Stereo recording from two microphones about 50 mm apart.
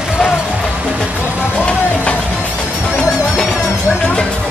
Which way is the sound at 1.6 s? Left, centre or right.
Left.